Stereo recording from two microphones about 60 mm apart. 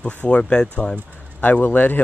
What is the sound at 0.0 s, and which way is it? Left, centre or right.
Speech, left.